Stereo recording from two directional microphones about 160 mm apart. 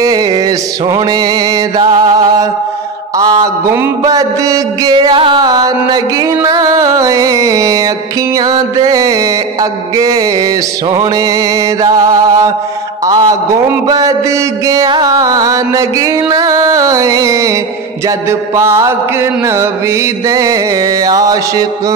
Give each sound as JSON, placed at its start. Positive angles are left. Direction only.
{"t": 0.0, "sound": "music", "side_deg": -25}
{"t": 3.2, "sound": "mantra", "side_deg": -25}
{"t": 18.6, "sound": "mantra", "side_deg": -20}
{"t": 19.4, "sound": "music", "side_deg": -15}
{"t": 20.2, "sound": "mantra", "side_deg": -20}